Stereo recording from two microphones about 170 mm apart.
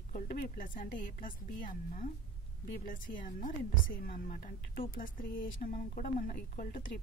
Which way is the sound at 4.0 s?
55° left (ahead or behind).